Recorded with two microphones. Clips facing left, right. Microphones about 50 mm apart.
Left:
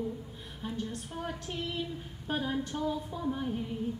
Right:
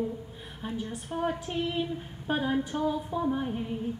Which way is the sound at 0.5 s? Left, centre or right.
Centre.